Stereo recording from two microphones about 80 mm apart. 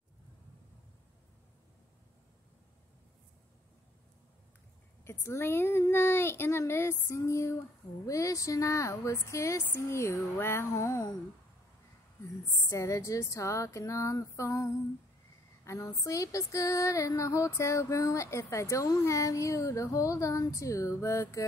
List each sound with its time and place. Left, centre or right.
5.0 s speech: left
12.6 s speech: left